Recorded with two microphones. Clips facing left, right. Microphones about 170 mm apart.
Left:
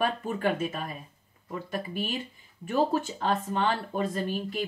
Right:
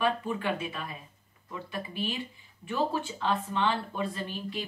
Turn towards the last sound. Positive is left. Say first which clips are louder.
# left 5 dB
turn(degrees=45)  # may be behind; listen again after turning